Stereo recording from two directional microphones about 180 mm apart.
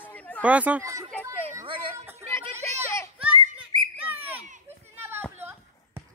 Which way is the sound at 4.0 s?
10° right (ahead or behind).